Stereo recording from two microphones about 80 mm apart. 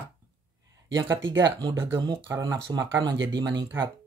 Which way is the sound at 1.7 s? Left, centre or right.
Right.